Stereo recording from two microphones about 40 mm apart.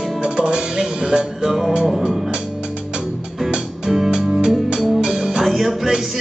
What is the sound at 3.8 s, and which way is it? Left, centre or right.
Music, centre.